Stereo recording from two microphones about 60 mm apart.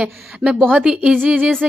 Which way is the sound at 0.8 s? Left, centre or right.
Centre.